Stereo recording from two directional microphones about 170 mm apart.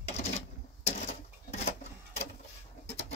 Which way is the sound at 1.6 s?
40° left (ahead or behind).